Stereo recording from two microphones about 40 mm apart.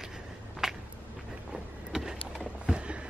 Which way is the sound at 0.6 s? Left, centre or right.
Centre.